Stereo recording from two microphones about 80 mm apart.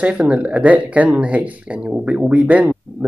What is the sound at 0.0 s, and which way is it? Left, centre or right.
Speech, centre.